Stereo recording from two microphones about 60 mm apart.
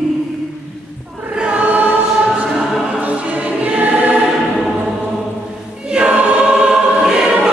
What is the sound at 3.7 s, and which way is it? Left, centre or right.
Choir, centre.